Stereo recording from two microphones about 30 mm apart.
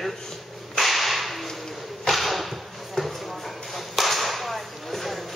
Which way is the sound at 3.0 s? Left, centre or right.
Centre.